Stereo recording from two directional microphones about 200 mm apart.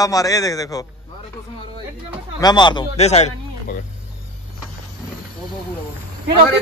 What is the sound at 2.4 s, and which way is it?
Speech, 20° left (ahead or behind).